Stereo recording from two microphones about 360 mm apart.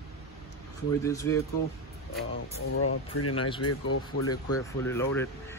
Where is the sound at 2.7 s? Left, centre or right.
Left.